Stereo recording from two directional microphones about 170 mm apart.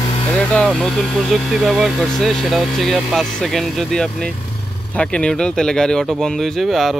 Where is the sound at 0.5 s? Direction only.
5° left (ahead or behind).